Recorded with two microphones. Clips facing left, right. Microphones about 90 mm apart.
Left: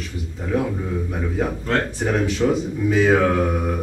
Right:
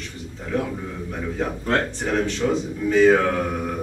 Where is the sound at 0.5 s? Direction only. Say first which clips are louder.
Left 3 dB; 5° left (ahead or behind).